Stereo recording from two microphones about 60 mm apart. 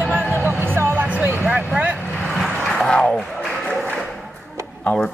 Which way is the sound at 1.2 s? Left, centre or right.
Right.